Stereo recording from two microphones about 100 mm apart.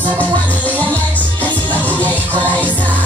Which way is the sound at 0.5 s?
15° left (ahead or behind).